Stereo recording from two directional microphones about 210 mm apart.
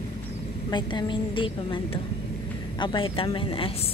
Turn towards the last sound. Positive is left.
turn(degrees=25)  # may be behind; listen again after turning